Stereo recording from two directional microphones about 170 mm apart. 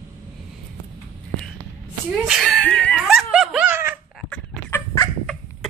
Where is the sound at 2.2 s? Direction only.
Centre (ahead or behind).